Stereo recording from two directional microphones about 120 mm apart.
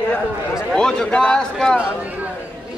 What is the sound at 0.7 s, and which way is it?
A man's voice, 5° left (ahead or behind).